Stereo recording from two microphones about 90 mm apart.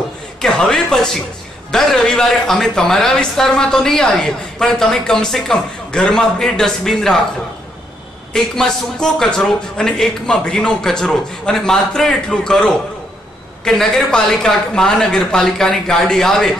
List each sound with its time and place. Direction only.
0.4 s a man's voice: 5° left (ahead or behind)
8.3 s a man's voice: 5° left (ahead or behind)